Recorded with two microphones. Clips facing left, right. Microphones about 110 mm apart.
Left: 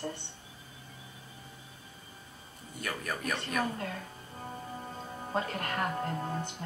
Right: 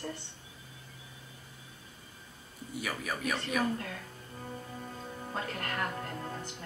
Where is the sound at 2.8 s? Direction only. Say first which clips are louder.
Even; 5° right (ahead or behind).